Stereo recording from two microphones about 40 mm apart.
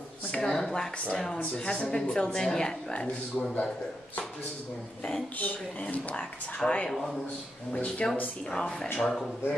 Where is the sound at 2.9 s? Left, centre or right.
Left.